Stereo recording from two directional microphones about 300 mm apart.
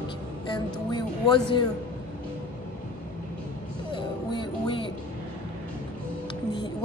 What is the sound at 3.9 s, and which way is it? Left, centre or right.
Music, centre.